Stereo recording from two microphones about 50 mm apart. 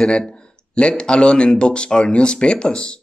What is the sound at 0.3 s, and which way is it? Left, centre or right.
Speech, centre.